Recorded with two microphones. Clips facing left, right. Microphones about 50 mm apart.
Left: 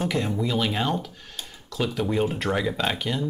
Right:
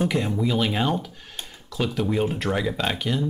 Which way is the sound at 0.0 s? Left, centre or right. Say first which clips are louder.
Right 2 dB; centre.